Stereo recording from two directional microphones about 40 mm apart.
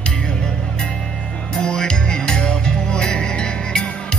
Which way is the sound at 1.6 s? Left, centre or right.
Left.